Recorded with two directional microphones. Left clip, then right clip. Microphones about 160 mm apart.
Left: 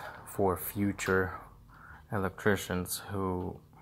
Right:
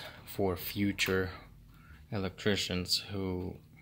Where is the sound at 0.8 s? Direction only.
15° right (ahead or behind).